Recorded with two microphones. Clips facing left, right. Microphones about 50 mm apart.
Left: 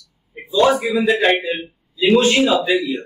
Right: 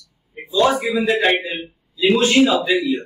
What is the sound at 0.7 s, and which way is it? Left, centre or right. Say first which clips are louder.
Speech: left 1 dB; centre.